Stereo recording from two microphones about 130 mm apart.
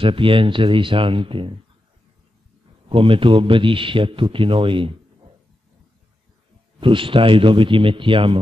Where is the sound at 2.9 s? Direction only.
40° right (ahead or behind).